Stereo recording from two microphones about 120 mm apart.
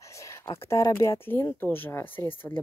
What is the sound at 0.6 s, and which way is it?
Speech, 20° left (ahead or behind).